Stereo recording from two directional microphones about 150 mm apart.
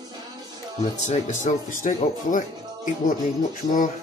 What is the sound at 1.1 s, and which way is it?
Speech, 55° left (ahead or behind).